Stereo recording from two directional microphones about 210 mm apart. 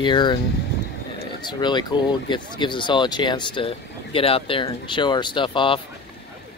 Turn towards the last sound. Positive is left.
turn(degrees=25)  # may be behind; listen again after turning